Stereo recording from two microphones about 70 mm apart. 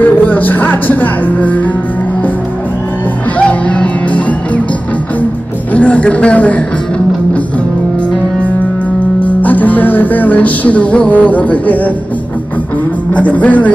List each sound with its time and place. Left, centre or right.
0.0 s music: left
3.3 s music: centre
5.7 s a man's voice: centre
9.2 s music: left
13.1 s music: left